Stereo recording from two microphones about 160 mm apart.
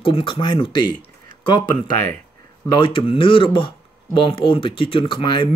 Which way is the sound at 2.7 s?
35° left (ahead or behind).